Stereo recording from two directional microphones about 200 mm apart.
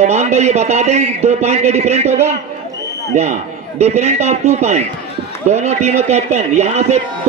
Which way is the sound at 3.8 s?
35° right (ahead or behind).